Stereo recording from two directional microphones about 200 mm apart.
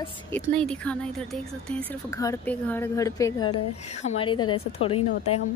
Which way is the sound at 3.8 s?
35° left (ahead or behind).